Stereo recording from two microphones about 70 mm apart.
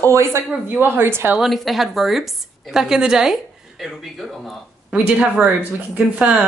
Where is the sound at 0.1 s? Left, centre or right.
Right.